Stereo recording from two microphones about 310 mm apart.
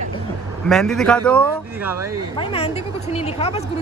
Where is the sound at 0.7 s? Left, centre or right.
Centre.